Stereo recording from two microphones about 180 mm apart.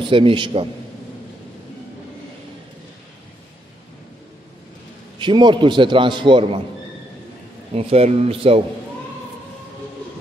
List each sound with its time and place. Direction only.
0.0 s a man's voice: 30° right (ahead or behind)
5.2 s a man's voice: 25° right (ahead or behind)
7.7 s speech: 35° right (ahead or behind)